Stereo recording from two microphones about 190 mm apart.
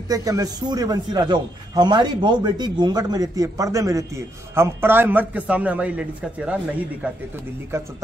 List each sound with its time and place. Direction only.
0.1 s a man's voice: 20° right (ahead or behind)